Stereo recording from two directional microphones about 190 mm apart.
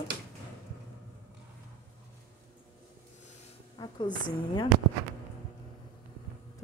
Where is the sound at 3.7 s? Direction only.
20° left (ahead or behind).